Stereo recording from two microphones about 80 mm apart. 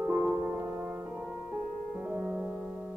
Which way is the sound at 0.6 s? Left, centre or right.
Right.